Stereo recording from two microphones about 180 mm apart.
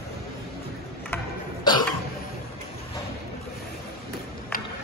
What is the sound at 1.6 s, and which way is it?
Cough, 25° left (ahead or behind).